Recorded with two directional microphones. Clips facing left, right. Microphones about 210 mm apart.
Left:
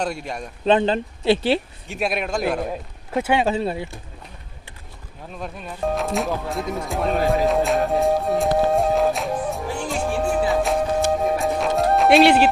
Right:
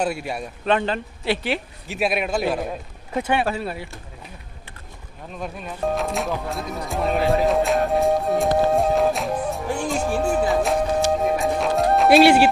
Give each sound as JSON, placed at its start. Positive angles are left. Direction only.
{"t": 0.0, "sound": "speech", "side_deg": -5}
{"t": 0.7, "sound": "speech", "side_deg": 25}
{"t": 1.9, "sound": "speech", "side_deg": -5}
{"t": 3.4, "sound": "speech", "side_deg": 25}
{"t": 5.4, "sound": "speech", "side_deg": 0}
{"t": 7.2, "sound": "music", "side_deg": 0}